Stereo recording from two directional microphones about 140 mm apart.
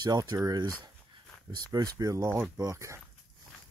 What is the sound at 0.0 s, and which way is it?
Speech, 30° right (ahead or behind).